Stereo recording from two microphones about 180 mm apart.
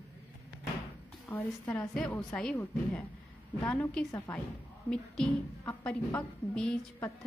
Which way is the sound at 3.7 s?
5° left (ahead or behind).